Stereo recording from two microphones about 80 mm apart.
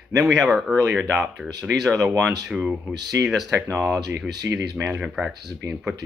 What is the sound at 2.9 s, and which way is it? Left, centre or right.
Speech, right.